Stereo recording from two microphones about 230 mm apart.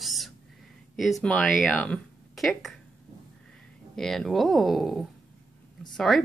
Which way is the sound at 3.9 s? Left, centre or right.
Centre.